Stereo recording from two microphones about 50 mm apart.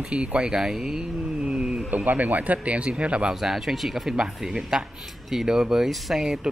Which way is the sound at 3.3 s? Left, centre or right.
Centre.